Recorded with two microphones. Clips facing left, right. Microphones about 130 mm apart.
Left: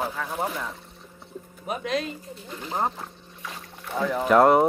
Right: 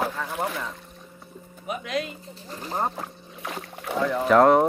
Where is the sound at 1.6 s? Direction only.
35° left (ahead or behind).